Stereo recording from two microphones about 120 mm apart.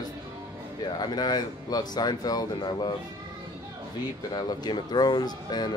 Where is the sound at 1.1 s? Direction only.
35° left (ahead or behind).